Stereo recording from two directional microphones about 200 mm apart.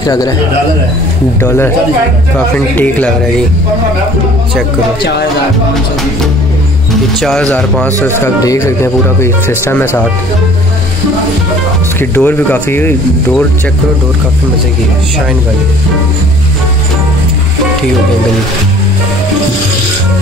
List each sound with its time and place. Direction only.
0.0 s speech: 20° left (ahead or behind)
1.4 s speech: 10° left (ahead or behind)
7.2 s speech: 5° left (ahead or behind)
12.0 s speech: 10° left (ahead or behind)